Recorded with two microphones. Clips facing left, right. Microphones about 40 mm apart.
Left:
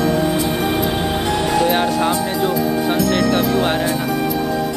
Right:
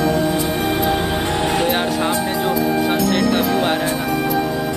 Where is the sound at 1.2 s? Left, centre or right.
Right.